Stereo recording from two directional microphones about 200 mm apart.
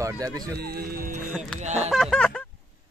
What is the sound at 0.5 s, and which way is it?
Speech, 50° right (ahead or behind).